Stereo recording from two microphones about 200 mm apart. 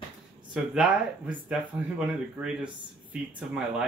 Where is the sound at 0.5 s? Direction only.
5° right (ahead or behind).